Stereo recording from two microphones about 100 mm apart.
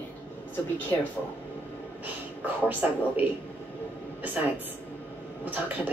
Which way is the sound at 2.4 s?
15° right (ahead or behind).